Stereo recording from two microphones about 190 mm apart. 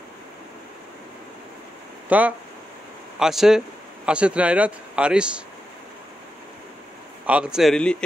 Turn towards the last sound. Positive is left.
turn(degrees=5)  # may be behind; listen again after turning